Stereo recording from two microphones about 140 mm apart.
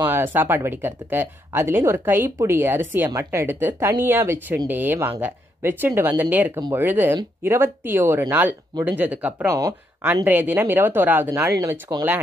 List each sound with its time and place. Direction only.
0.0 s speech: 15° right (ahead or behind)
9.5 s speech: 25° right (ahead or behind)
10.2 s speech: 15° right (ahead or behind)